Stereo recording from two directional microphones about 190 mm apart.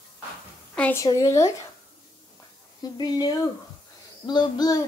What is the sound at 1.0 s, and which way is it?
Child singing, 15° left (ahead or behind).